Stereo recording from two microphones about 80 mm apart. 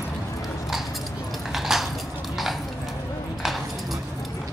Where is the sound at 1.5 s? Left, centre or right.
Centre.